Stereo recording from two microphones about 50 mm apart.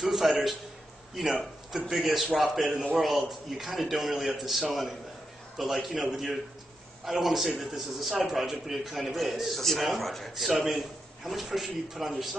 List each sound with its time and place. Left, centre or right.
0.0 s a man's voice: centre
7.1 s a man's voice: centre